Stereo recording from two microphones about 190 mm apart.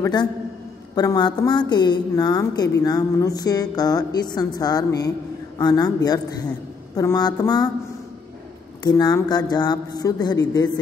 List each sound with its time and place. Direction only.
0.0 s a woman's voice: 20° left (ahead or behind)
8.8 s a woman's voice: 20° left (ahead or behind)